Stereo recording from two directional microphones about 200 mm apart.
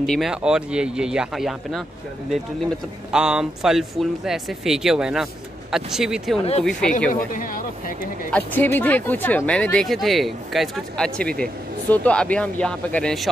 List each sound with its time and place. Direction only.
0.0 s speech: centre (ahead or behind)
3.1 s speech: 5° right (ahead or behind)
7.1 s speech: 40° left (ahead or behind)
8.3 s speech: 10° left (ahead or behind)